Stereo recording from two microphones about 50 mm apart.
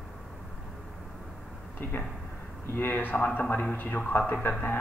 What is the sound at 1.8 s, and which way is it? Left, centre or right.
A man's voice, left.